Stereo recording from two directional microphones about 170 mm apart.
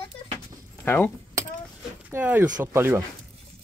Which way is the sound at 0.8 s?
10° left (ahead or behind).